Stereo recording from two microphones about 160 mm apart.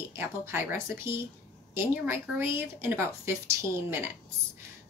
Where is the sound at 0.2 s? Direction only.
15° right (ahead or behind).